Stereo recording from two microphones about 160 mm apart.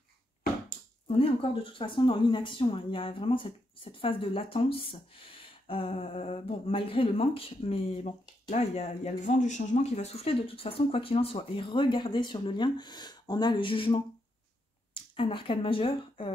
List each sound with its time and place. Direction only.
1.0 s a woman's voice: 35° left (ahead or behind)
15.1 s a woman's voice: 35° left (ahead or behind)